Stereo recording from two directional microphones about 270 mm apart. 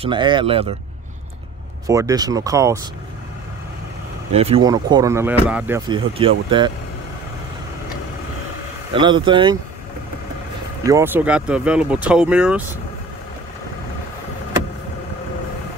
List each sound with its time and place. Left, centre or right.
0.0 s speech: centre
1.9 s speech: centre
4.3 s speech: right; by 5.8 s centre
5.9 s speech: centre
8.9 s speech: centre
10.8 s speech: centre